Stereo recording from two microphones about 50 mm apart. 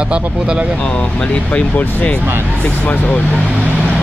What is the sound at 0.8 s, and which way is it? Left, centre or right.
Speech, centre.